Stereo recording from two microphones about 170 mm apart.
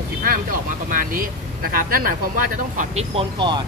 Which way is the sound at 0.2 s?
55° right (ahead or behind).